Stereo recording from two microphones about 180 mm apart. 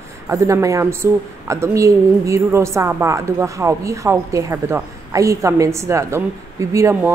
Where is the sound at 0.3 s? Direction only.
15° right (ahead or behind).